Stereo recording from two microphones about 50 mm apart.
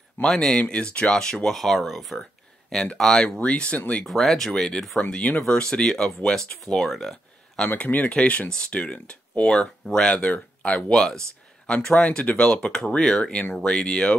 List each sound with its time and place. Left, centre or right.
0.3 s speech: centre
0.6 s speech: left
3.3 s speech: left
4.0 s speech: centre
6.5 s speech: left
6.9 s a sound: centre
7.6 s speech: left
10.9 s speech: centre
13.7 s speech: centre